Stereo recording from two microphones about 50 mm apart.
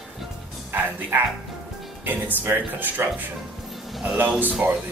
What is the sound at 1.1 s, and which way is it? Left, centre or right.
Speech, right.